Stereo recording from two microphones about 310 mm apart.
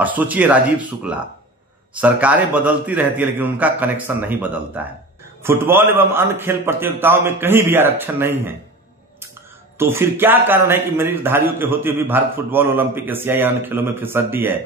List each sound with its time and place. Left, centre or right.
0.0 s a man's voice: centre
9.8 s a man's voice: centre